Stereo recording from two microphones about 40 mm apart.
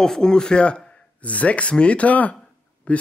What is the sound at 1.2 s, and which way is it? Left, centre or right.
Speech, left.